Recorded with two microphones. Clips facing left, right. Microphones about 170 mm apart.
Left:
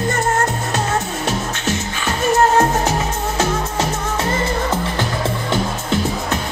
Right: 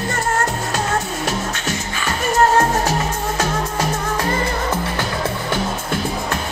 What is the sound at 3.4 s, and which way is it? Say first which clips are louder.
Music: left 3 dB; 25° left (ahead or behind).